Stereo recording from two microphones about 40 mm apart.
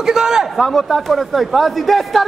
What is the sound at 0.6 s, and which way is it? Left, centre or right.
Speech, centre.